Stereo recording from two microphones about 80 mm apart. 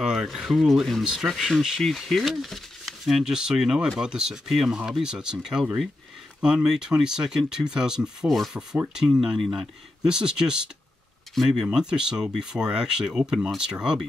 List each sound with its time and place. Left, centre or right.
0.0 s speech: centre
8.5 s rub: right
8.9 s speech: centre